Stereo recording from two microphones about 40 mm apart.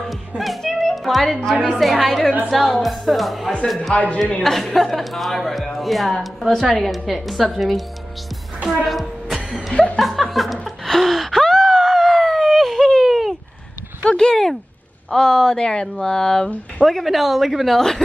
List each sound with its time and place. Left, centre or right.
0.4 s music: centre
1.3 s a woman's voice: centre
3.9 s speech: left
4.4 s a woman's voice: centre
8.8 s music: centre
9.9 s speech: centre
10.6 s gasp: centre
14.1 s a sound: centre
15.0 s speech: centre
16.8 s a woman's voice: centre
17.7 s speech: centre